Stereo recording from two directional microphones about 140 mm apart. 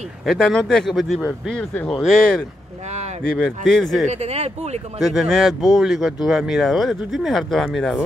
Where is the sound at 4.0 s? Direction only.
50° right (ahead or behind).